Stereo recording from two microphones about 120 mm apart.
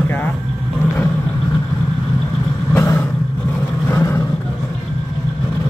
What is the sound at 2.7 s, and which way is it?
Vehicle, 20° left (ahead or behind).